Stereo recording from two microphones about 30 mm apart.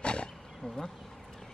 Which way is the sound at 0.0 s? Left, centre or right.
Left.